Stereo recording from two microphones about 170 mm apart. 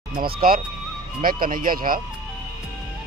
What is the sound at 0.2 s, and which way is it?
Speech, 60° right (ahead or behind).